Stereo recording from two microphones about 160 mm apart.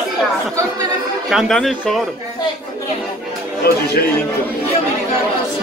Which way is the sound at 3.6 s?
85° left.